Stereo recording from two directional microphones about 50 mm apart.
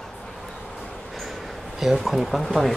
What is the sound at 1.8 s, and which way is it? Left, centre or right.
Speech, centre.